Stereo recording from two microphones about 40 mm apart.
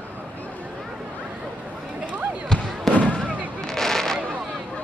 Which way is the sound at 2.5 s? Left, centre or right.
Centre.